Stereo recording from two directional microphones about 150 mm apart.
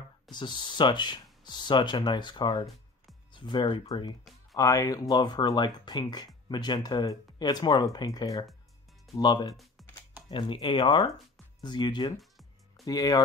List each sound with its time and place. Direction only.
0.3 s speech: 30° left (ahead or behind)
12.2 s music: centre (ahead or behind)
12.8 s speech: 25° left (ahead or behind)